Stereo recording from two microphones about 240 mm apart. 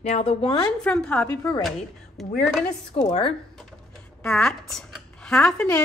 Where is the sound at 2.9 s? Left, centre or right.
Left.